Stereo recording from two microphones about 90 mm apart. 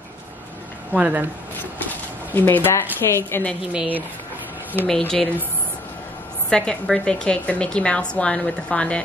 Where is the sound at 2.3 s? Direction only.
25° left (ahead or behind).